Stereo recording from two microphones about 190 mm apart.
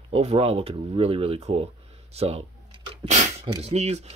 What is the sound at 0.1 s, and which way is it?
Speech, 30° right (ahead or behind).